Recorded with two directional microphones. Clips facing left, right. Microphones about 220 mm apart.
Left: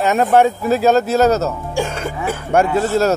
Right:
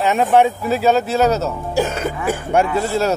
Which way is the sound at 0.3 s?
45° left (ahead or behind).